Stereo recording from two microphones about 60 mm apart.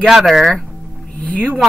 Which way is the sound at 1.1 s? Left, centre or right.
Left.